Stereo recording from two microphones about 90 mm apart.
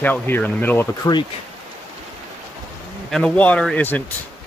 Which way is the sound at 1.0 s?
45° left (ahead or behind).